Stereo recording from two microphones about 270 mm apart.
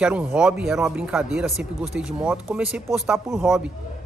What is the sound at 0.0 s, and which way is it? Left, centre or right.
A man's voice, centre.